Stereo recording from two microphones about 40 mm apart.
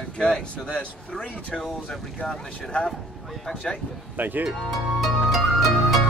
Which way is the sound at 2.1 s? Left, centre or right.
Left.